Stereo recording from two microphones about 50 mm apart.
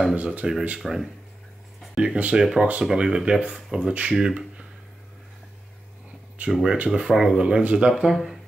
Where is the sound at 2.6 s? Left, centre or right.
Right.